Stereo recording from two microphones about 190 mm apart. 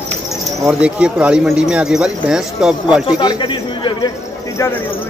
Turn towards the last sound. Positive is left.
turn(degrees=15)  # may be behind; listen again after turning